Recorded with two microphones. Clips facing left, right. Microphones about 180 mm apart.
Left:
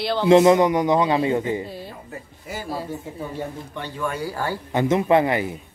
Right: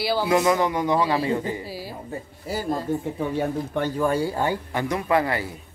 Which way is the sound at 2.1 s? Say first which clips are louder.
Right 4 dB; 35° right (ahead or behind).